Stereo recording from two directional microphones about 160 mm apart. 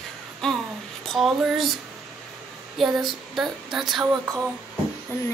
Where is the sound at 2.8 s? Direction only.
Centre (ahead or behind).